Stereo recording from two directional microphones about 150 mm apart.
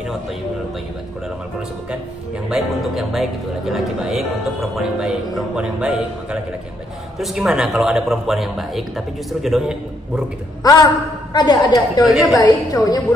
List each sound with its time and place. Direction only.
2.5 s a man's voice: centre (ahead or behind)
10.6 s a woman's voice: 25° left (ahead or behind)
12.0 s a man's voice: centre (ahead or behind)
12.4 s a woman's voice: 25° left (ahead or behind)